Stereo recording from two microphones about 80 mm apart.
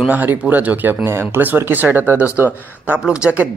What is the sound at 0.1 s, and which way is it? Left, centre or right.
Speech, right.